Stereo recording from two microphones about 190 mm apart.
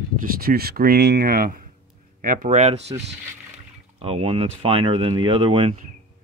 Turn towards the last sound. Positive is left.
turn(degrees=-25)  # may be behind; listen again after turning